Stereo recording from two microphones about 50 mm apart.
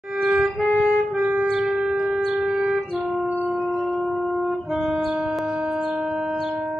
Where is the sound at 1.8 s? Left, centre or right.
Centre.